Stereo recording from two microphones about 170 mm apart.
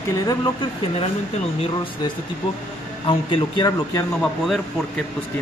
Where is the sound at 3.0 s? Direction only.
30° left (ahead or behind).